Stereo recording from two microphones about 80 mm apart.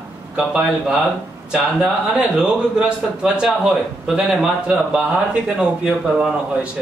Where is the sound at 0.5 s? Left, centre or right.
Centre.